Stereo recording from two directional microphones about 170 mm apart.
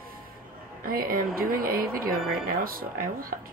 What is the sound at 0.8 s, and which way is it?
Speech, 55° right (ahead or behind).